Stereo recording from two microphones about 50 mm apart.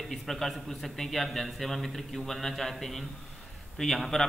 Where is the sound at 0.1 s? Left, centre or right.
Centre.